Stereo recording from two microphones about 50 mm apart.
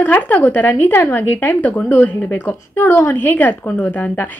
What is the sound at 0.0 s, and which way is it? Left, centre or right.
A woman's voice, left.